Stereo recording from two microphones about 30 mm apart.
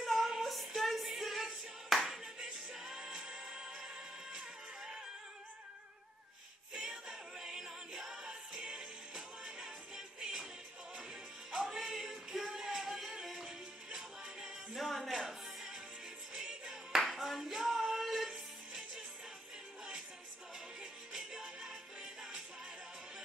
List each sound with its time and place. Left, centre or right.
0.0 s female singing: centre
1.0 s singing: centre
2.0 s music: centre
6.7 s music: right
7.1 s music: centre
11.5 s music: centre
14.8 s music: centre
16.3 s music: centre
17.1 s clapping: centre
21.1 s music: centre